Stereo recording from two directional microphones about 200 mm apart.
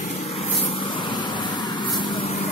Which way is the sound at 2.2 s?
35° left (ahead or behind).